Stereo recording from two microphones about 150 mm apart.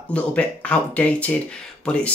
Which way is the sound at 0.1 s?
10° left (ahead or behind).